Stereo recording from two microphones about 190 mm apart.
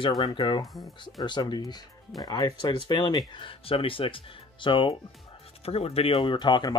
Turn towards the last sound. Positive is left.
turn(degrees=25)  # may be behind; listen again after turning